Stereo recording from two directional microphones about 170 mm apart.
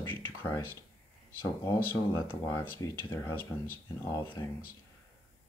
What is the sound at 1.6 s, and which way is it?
Speech, 10° left (ahead or behind).